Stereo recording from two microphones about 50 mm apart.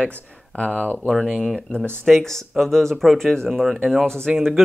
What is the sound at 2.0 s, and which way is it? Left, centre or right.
Speech, centre.